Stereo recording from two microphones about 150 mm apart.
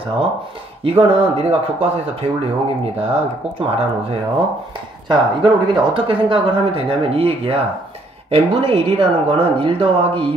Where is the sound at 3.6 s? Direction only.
40° right (ahead or behind).